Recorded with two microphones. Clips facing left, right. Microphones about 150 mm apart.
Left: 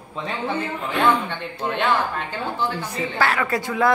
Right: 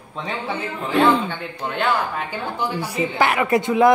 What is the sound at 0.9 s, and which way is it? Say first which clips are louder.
Speech: right 4 dB; 25° right (ahead or behind).